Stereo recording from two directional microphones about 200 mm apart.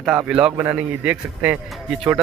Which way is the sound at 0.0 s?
Centre (ahead or behind).